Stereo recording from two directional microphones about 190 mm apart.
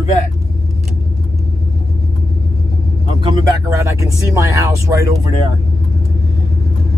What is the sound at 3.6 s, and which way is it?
Speech, 15° right (ahead or behind).